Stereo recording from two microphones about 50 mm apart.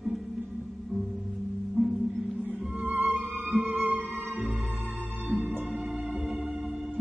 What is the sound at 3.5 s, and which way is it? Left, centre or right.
Music, right.